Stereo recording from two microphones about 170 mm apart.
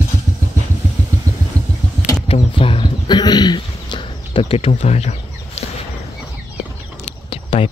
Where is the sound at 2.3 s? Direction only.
30° left (ahead or behind).